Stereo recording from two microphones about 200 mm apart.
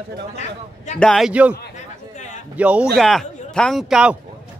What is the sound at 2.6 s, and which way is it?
A man's voice, 5° right (ahead or behind).